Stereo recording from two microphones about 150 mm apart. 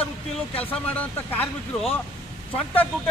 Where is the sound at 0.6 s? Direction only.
10° left (ahead or behind).